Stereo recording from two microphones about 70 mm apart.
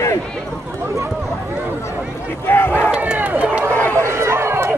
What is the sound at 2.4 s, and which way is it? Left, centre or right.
Battle cry, left.